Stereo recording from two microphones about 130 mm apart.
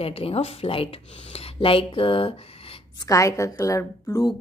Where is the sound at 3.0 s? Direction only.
25° left (ahead or behind).